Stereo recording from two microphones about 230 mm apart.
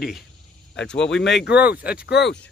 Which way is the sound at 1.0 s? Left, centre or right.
Left.